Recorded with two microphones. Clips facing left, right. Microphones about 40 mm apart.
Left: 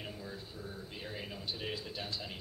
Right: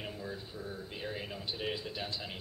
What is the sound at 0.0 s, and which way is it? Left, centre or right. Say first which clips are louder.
A man's voice: right 3 dB; centre.